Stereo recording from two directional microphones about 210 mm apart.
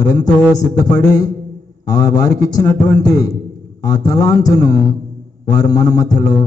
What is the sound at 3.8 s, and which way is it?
Speech, 15° left (ahead or behind).